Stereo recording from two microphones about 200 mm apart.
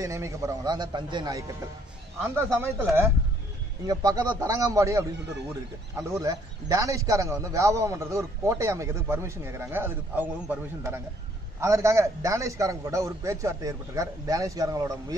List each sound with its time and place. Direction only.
0.0 s a man's voice: 15° right (ahead or behind)